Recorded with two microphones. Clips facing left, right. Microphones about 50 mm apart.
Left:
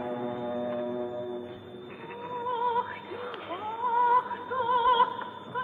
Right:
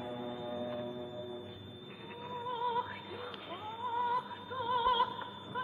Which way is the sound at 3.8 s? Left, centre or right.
Left.